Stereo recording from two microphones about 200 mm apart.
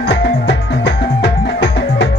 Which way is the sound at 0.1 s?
55° left (ahead or behind).